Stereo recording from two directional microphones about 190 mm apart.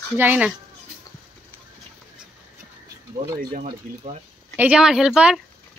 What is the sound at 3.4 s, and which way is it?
Speech, 50° right (ahead or behind).